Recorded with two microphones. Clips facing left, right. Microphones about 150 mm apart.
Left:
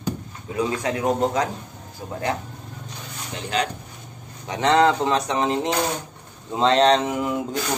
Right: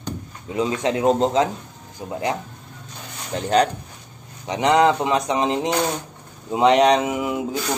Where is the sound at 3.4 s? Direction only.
40° right (ahead or behind).